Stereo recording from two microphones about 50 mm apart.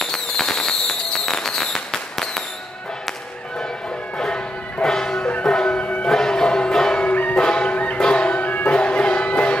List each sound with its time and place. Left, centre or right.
0.0 s fireworks: centre
4.8 s music: centre
5.8 s a sound: left
6.0 s music: centre
7.1 s music: left
7.3 s music: centre
8.5 s music: left